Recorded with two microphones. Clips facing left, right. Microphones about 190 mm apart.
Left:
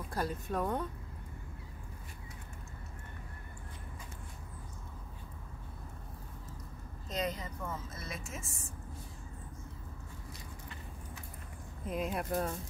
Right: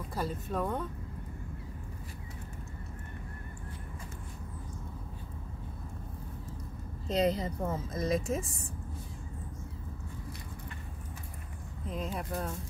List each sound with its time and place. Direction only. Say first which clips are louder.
0.1 s speech: right 1 dB; centre (ahead or behind)
7.1 s a woman's voice: right 8 dB; 30° right (ahead or behind)
11.9 s speech: left 2 dB; 5° left (ahead or behind)